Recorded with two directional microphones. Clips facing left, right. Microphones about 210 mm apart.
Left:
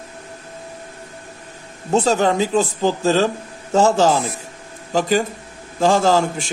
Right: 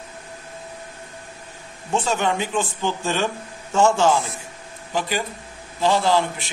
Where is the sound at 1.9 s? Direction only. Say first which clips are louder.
Left 6 dB; 40° left (ahead or behind).